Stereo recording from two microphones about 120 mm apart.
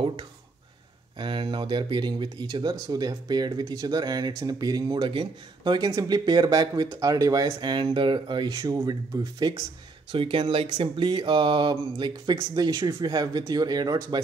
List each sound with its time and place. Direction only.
0.0 s speech: 45° right (ahead or behind)
10.1 s speech: 45° right (ahead or behind)